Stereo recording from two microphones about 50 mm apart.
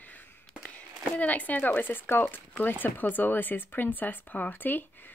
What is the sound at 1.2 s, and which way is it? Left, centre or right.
Speech, left.